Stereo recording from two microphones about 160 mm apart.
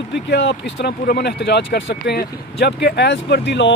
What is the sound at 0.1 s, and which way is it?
Speech, 90° left.